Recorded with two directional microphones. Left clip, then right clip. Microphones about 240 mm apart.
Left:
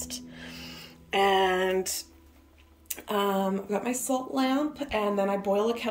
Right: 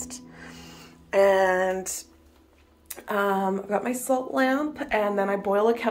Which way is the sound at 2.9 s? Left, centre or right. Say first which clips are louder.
Right 3 dB; centre.